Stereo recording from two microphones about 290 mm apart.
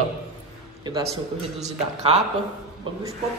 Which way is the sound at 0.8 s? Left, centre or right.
Centre.